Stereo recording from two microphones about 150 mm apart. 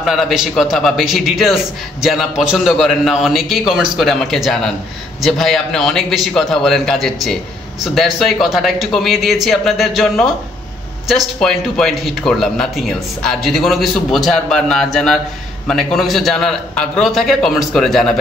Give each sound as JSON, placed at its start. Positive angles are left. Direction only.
{"t": 0.0, "sound": "a man's voice", "side_deg": 0}